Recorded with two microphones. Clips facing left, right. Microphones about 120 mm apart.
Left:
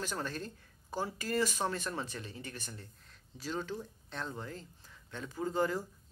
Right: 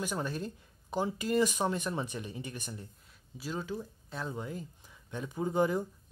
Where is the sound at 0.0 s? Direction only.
15° right (ahead or behind).